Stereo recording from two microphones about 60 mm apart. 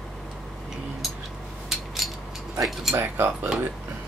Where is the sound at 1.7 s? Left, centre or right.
Centre.